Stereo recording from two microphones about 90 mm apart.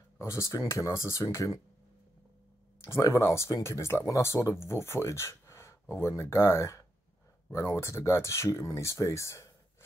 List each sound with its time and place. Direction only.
0.2 s speech: 35° left (ahead or behind)
2.8 s speech: 35° left (ahead or behind)